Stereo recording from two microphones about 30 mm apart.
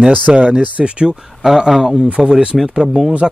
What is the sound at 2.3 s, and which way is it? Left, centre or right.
Speech, right.